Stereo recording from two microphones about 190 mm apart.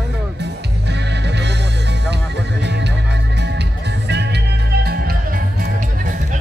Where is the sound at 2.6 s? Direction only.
65° right (ahead or behind).